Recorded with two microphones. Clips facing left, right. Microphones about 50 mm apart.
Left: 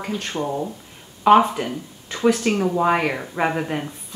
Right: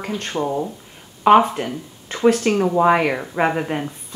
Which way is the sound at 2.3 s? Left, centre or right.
Centre.